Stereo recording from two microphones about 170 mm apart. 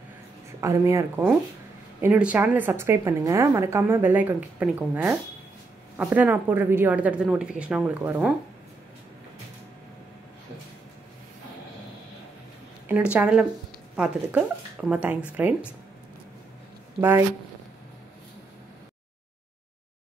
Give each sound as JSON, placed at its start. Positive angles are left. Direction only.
{"t": 0.6, "sound": "a woman's voice", "side_deg": -15}
{"t": 12.8, "sound": "a woman's voice", "side_deg": -5}